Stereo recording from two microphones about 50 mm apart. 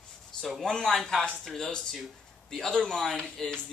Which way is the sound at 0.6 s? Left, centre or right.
Centre.